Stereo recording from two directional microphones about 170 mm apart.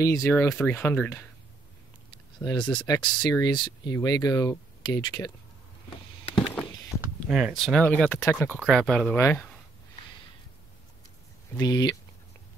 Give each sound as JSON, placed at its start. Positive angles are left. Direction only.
{"t": 0.0, "sound": "speech", "side_deg": 15}
{"t": 2.3, "sound": "speech", "side_deg": 25}
{"t": 6.3, "sound": "a sound", "side_deg": 5}
{"t": 7.2, "sound": "speech", "side_deg": 0}
{"t": 11.5, "sound": "speech", "side_deg": 20}